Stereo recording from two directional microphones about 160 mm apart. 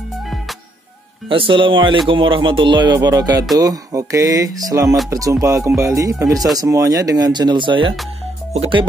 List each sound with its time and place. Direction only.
1.3 s speech: 35° right (ahead or behind)